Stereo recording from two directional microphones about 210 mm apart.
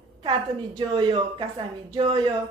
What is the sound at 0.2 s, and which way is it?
A woman's voice, 25° right (ahead or behind).